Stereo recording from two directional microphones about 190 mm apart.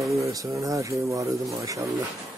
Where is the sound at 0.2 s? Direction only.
15° right (ahead or behind).